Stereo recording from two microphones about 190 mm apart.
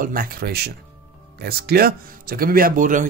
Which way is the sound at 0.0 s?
50° right (ahead or behind).